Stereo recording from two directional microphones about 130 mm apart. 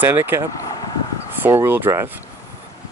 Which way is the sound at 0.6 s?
30° left (ahead or behind).